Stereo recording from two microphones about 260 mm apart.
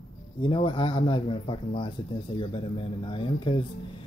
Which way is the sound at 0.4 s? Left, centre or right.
Centre.